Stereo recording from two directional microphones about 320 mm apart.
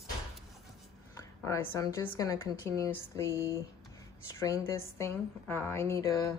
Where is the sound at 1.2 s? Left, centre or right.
Centre.